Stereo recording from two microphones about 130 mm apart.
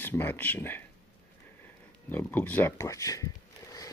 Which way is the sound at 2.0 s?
15° left (ahead or behind).